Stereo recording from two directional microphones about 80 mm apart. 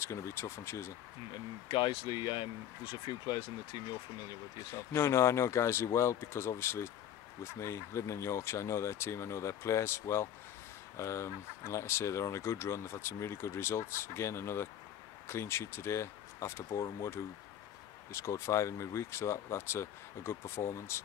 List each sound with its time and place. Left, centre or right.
0.0 s speech: left
1.7 s speech: left
4.9 s speech: left